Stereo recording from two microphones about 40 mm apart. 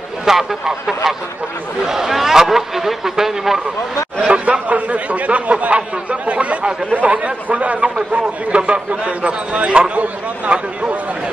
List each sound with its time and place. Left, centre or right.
0.2 s a sound: centre
1.9 s a man's voice: centre
4.3 s a man's voice: right